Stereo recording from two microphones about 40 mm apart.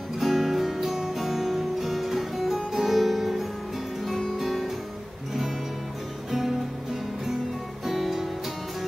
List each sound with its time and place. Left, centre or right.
0.2 s guitar: centre
4.4 s music: centre
7.8 s music: centre